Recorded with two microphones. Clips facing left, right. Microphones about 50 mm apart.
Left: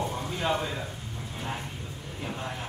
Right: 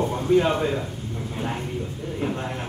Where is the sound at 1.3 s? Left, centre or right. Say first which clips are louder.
Right 7 dB; centre.